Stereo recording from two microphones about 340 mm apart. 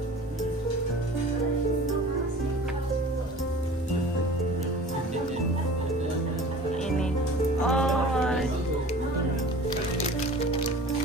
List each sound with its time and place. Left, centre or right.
7.6 s music: centre
9.7 s music: centre